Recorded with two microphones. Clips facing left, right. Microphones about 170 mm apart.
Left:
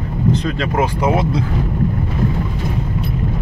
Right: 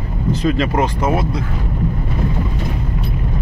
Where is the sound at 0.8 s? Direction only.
15° left (ahead or behind).